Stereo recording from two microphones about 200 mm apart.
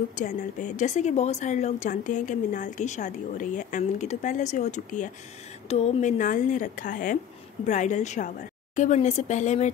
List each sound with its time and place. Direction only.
0.1 s a woman's voice: 40° left (ahead or behind)